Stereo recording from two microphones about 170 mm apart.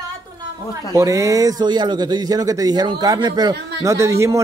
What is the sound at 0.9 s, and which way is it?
A man's voice, 20° right (ahead or behind).